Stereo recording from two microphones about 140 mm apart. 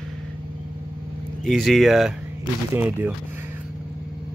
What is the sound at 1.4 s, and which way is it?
Speech, centre (ahead or behind).